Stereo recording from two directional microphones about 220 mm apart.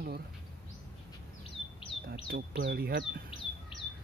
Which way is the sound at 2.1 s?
50° right (ahead or behind).